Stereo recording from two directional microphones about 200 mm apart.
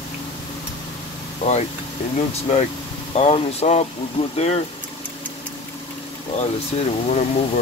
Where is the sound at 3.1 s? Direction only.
30° left (ahead or behind).